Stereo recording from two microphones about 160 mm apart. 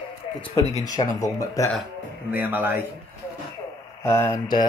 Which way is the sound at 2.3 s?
10° right (ahead or behind).